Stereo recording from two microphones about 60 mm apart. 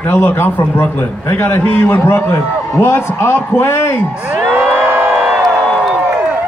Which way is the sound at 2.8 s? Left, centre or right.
Left.